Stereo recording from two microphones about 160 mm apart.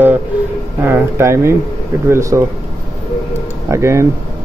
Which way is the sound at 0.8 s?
15° right (ahead or behind).